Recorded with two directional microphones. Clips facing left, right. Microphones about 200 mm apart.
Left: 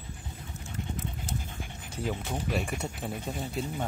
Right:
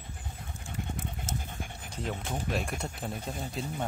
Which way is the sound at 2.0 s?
Centre (ahead or behind).